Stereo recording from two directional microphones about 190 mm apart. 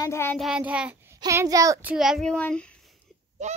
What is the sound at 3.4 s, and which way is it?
Honk, 40° right (ahead or behind).